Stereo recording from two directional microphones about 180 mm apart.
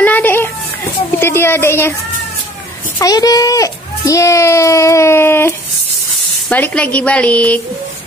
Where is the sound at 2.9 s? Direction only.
20° left (ahead or behind).